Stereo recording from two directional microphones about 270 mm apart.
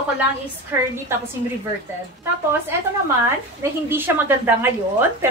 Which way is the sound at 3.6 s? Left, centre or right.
Centre.